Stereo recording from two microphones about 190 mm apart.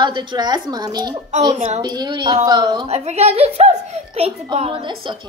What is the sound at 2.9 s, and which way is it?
A child's voice, 35° right (ahead or behind).